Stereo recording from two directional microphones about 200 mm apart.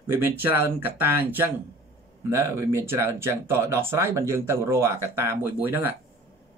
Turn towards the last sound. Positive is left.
turn(degrees=-10)  # may be behind; listen again after turning